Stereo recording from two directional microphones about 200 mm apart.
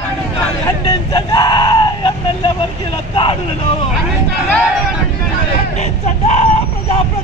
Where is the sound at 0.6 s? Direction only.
20° left (ahead or behind).